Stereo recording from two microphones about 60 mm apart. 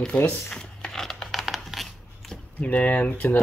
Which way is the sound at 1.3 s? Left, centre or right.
Centre.